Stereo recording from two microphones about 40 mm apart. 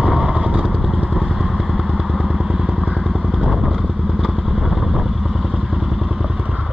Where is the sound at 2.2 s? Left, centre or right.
Right.